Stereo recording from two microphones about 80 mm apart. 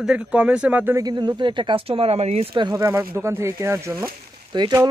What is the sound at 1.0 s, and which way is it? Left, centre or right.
Speech, right.